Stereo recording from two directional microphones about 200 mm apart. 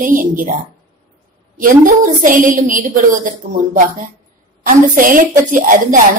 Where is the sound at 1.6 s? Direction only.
40° right (ahead or behind).